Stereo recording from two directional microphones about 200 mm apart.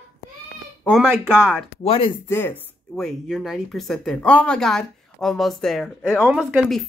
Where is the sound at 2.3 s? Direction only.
10° left (ahead or behind).